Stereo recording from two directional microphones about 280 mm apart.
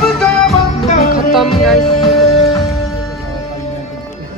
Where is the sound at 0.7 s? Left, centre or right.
Left.